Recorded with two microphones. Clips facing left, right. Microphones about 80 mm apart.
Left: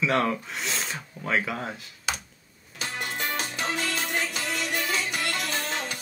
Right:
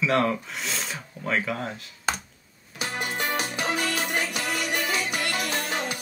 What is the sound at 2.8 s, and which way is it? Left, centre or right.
Music, centre.